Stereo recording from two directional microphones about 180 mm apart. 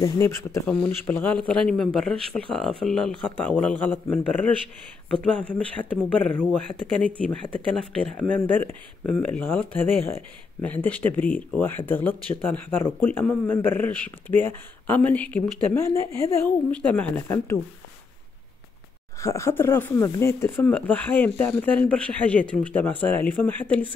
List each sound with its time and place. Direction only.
0.0 s speech: 15° left (ahead or behind)
19.2 s speech: 15° left (ahead or behind)